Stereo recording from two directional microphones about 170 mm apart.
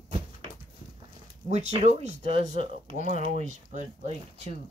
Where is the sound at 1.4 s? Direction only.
40° right (ahead or behind).